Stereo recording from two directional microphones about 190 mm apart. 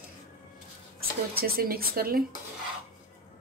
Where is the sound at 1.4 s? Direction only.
50° right (ahead or behind).